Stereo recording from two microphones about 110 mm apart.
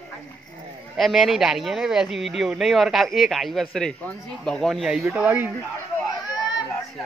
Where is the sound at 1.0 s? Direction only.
Centre (ahead or behind).